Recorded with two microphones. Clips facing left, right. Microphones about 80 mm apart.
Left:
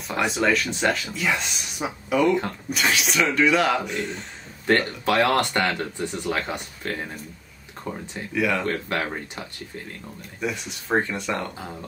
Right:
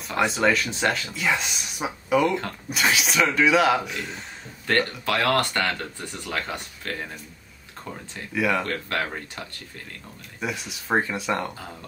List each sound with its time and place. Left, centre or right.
0.3 s speech: centre
4.6 s speech: left
8.4 s speech: centre
8.6 s speech: centre
10.4 s speech: centre